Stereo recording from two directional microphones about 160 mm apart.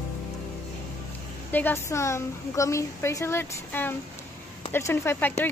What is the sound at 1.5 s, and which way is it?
A woman's voice, 10° left (ahead or behind).